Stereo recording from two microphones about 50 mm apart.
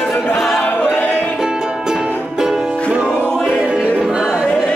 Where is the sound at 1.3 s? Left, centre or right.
Centre.